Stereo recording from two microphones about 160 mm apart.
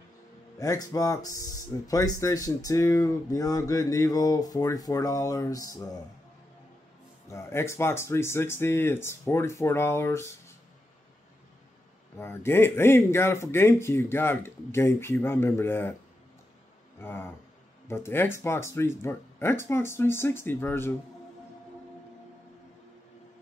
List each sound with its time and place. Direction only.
0.6 s speech: 20° left (ahead or behind)
7.2 s speech: 15° left (ahead or behind)
12.2 s speech: 15° left (ahead or behind)
17.0 s speech: 15° left (ahead or behind)